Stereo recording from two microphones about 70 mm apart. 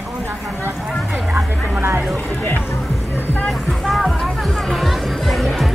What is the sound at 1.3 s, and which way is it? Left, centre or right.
Vehicle, right.